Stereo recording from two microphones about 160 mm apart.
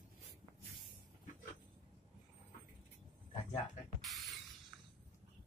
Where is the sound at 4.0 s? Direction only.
Centre (ahead or behind).